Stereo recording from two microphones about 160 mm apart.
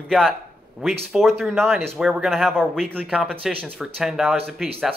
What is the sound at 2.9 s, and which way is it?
Speech, 10° right (ahead or behind).